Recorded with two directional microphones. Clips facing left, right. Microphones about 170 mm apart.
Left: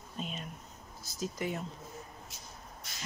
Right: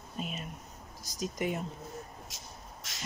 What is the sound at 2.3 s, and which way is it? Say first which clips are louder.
Vehicle: right 1 dB; 90° right.